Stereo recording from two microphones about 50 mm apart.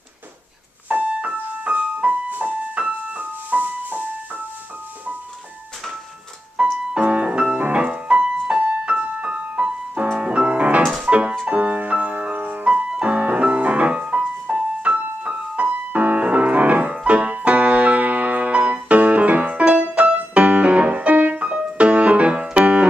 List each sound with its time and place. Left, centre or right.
0.8 s music: right
6.5 s music: centre
8.8 s keyboard: right
10.1 s music: right
12.6 s music: right